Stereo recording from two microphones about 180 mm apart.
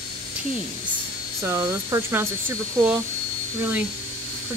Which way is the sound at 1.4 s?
15° right (ahead or behind).